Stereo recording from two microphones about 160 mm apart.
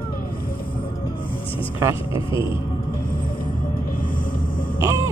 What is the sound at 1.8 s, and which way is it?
Speech, 20° right (ahead or behind).